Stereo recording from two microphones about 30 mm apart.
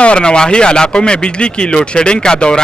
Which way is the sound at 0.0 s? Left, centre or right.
Left.